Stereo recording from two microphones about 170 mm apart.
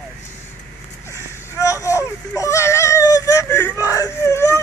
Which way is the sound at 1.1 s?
20° left (ahead or behind).